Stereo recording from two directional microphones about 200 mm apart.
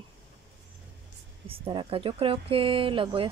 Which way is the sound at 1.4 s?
25° right (ahead or behind).